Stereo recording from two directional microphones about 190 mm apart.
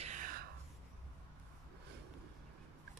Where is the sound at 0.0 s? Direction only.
40° right (ahead or behind).